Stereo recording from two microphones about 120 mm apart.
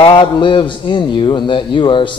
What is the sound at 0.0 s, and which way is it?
A man's voice, 40° left (ahead or behind).